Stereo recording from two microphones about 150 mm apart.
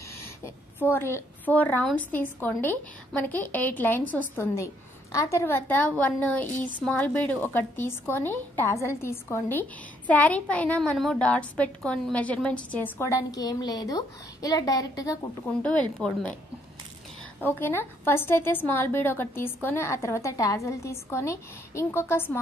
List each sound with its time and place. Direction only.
0.7 s a woman's voice: 15° left (ahead or behind)
15.4 s a woman's voice: 5° left (ahead or behind)
17.5 s a woman's voice: 15° left (ahead or behind)